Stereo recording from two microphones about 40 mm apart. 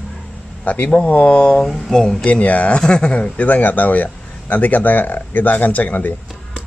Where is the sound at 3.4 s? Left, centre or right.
Left.